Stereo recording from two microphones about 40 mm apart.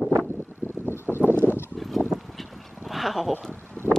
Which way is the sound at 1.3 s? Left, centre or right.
Right.